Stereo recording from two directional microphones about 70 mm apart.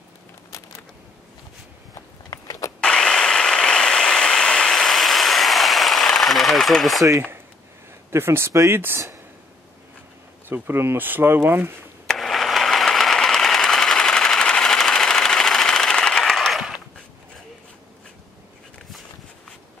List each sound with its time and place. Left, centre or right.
2.0 s a sound: left
2.8 s vehicle: centre
8.1 s speech: right
10.5 s speech: right
12.1 s sewing machine: centre